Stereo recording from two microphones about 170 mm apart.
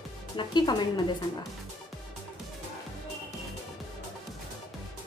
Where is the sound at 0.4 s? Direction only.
25° left (ahead or behind).